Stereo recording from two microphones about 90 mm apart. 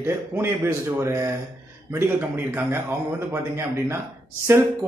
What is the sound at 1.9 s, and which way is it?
Speech, 25° right (ahead or behind).